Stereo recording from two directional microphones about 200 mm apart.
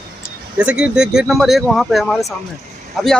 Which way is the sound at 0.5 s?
5° right (ahead or behind).